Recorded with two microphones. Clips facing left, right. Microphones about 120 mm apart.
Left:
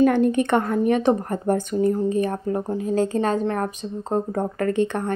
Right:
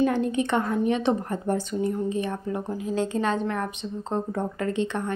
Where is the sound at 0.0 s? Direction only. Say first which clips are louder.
Left 5 dB; 60° left (ahead or behind).